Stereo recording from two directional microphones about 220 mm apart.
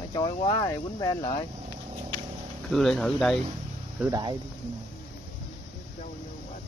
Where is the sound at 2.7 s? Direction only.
Centre (ahead or behind).